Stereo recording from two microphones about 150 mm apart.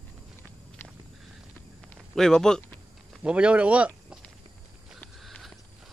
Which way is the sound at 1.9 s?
5° left (ahead or behind).